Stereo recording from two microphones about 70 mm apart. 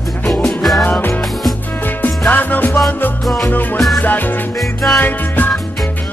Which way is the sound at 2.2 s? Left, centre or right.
Left.